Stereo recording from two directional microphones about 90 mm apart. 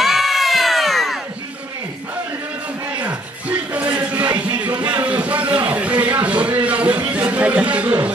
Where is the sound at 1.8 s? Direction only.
30° right (ahead or behind).